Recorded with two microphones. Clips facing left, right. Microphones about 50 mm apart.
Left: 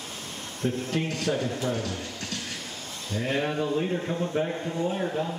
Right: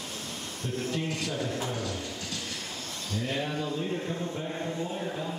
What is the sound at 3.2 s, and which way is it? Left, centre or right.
Speech, left.